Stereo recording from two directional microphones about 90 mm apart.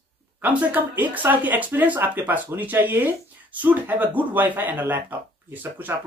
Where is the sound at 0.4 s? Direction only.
15° right (ahead or behind).